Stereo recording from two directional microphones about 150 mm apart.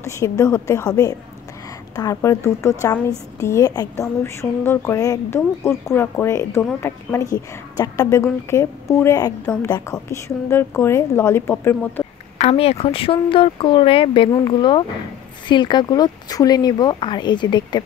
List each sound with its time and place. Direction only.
0.0 s speech: 20° left (ahead or behind)
2.0 s a woman's voice: 20° left (ahead or behind)
12.4 s speech: 40° left (ahead or behind)